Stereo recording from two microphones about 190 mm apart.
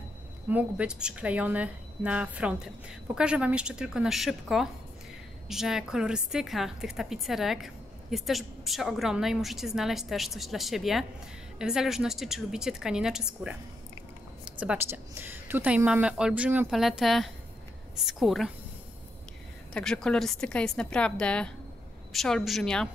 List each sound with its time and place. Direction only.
0.5 s a woman's voice: 5° right (ahead or behind)
19.7 s a woman's voice: 5° left (ahead or behind)